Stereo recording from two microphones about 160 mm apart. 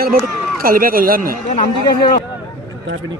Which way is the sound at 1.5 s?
25° left (ahead or behind).